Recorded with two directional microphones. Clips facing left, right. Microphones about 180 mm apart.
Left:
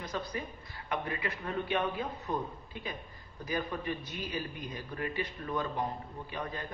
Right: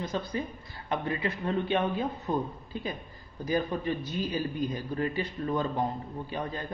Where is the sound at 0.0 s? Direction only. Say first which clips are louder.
Right 5 dB; 25° right (ahead or behind).